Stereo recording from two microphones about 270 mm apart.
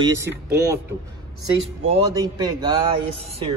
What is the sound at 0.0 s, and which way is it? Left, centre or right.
Speech, centre.